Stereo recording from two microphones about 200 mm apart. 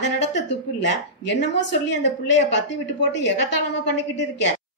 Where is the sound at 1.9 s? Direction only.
60° left (ahead or behind).